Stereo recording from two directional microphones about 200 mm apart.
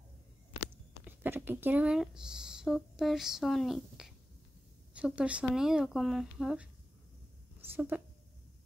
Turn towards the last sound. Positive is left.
turn(degrees=-10)  # may be behind; listen again after turning